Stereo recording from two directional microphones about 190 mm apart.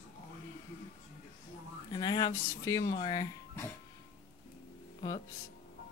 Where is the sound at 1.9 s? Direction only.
20° left (ahead or behind).